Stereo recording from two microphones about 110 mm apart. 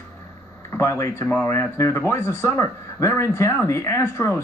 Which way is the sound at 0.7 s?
25° left (ahead or behind).